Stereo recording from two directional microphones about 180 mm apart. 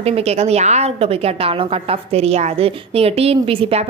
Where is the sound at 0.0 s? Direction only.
35° right (ahead or behind).